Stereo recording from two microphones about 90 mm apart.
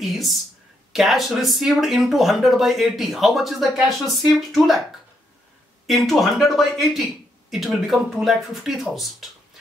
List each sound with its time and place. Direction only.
0.0 s speech: centre (ahead or behind)
5.9 s speech: centre (ahead or behind)